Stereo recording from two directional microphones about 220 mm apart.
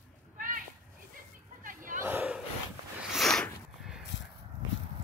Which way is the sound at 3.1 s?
Centre (ahead or behind).